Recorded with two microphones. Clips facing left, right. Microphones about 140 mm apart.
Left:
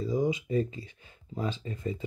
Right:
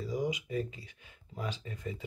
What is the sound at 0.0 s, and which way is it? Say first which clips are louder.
Speech: left 6 dB; 25° left (ahead or behind).